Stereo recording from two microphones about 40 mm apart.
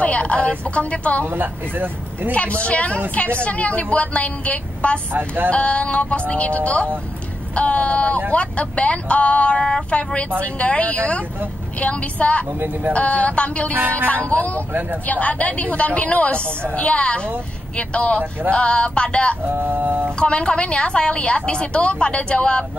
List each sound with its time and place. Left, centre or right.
0.0 s a woman's voice: left
1.2 s speech: right
2.3 s a woman's voice: left
5.1 s a sound: right
5.5 s a woman's voice: left
12.5 s speech: right
12.9 s a woman's voice: left
13.7 s a sound: right
14.1 s a woman's voice: left
14.7 s speech: right
15.0 s a woman's voice: left
19.4 s a sound: right
20.2 s a woman's voice: left